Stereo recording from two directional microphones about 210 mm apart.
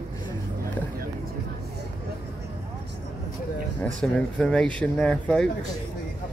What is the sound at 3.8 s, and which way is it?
Speech, 5° left (ahead or behind).